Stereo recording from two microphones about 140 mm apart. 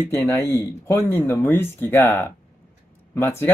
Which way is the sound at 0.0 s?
20° left (ahead or behind).